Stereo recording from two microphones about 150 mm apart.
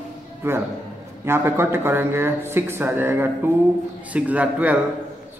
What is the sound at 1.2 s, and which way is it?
A man's voice, 15° right (ahead or behind).